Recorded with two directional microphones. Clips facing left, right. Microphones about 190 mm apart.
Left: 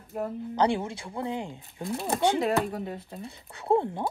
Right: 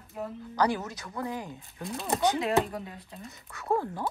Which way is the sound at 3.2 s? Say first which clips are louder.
Left 4 dB; 30° left (ahead or behind).